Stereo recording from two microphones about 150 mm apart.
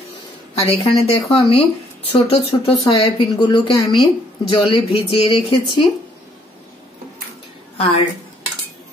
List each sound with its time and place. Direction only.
0.6 s a woman's voice: 40° left (ahead or behind)